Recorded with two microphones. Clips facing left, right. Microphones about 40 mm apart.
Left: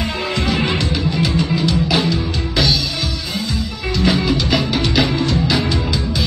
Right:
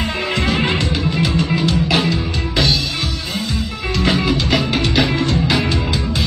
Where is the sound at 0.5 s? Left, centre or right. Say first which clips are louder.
Even; right.